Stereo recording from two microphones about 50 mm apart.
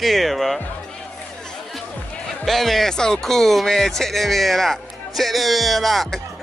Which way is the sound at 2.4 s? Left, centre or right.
Centre.